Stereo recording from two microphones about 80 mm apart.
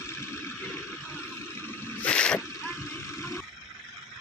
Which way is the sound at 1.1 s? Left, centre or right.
Left.